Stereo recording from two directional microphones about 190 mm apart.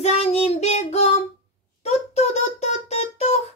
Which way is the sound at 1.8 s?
35° left (ahead or behind).